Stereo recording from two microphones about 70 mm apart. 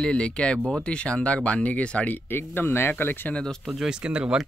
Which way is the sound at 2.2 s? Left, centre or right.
Left.